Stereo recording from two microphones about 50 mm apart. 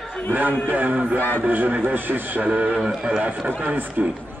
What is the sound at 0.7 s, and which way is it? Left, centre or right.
A man's voice, right.